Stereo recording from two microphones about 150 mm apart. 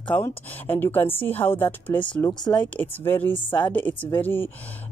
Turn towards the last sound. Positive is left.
turn(degrees=15)  # may be behind; listen again after turning